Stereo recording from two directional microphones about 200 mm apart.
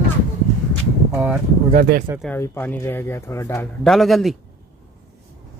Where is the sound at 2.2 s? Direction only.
10° left (ahead or behind).